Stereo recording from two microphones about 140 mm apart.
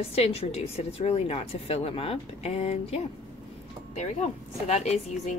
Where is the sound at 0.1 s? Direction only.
45° left (ahead or behind).